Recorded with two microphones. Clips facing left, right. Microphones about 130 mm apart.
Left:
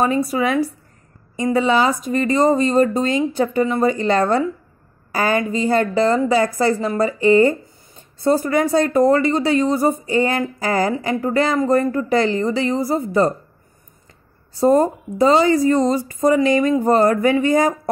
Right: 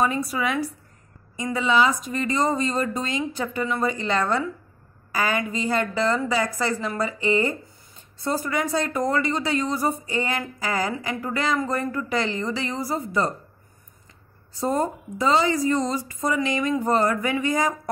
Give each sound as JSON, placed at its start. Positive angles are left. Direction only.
{"t": 0.3, "sound": "speech", "side_deg": 30}
{"t": 12.2, "sound": "speech", "side_deg": 45}
{"t": 12.4, "sound": "a woman's voice", "side_deg": 25}
{"t": 14.6, "sound": "speech", "side_deg": 40}
{"t": 15.5, "sound": "speech", "side_deg": 60}
{"t": 16.3, "sound": "speech", "side_deg": 35}